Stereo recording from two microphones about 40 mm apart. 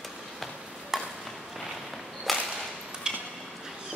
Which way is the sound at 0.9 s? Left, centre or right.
Centre.